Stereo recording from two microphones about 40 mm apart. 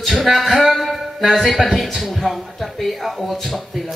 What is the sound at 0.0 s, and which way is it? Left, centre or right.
Speech, centre.